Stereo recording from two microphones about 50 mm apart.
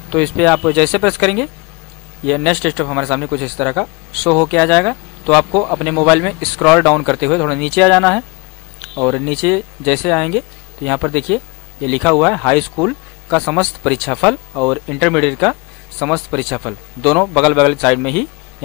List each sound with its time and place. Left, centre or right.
0.1 s speech: centre